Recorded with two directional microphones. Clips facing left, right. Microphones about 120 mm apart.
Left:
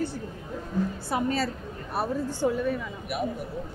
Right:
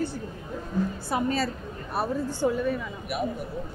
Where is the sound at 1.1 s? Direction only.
20° right (ahead or behind).